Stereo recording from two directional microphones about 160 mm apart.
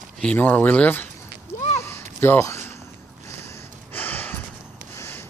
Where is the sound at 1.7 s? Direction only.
15° left (ahead or behind).